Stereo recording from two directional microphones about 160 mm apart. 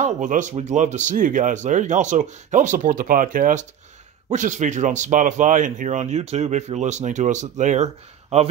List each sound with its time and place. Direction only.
0.0 s speech: 50° right (ahead or behind)